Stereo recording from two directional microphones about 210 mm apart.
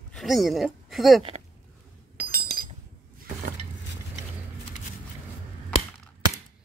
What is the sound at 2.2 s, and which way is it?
Chink, 45° right (ahead or behind).